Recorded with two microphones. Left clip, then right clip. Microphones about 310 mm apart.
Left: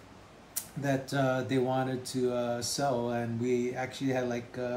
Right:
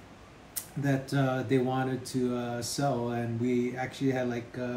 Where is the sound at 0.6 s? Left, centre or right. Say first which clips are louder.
Even; centre.